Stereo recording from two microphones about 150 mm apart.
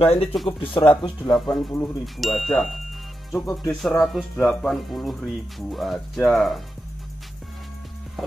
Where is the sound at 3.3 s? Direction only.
15° left (ahead or behind).